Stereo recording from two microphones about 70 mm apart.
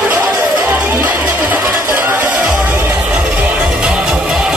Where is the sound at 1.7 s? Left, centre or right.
Right.